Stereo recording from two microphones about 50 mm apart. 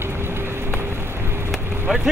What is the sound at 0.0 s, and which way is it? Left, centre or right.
Vehicle, right.